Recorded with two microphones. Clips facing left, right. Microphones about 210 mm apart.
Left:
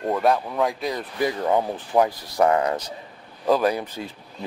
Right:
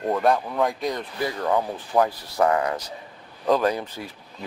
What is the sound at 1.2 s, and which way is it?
Speech, 20° left (ahead or behind).